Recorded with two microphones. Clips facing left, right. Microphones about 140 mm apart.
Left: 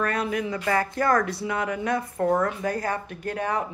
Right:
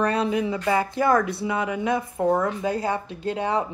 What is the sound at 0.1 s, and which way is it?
A woman's voice, 25° right (ahead or behind).